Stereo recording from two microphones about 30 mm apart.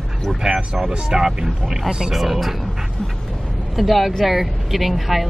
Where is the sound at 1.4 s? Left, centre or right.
Right.